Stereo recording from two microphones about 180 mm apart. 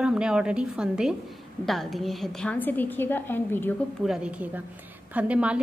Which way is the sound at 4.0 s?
5° right (ahead or behind).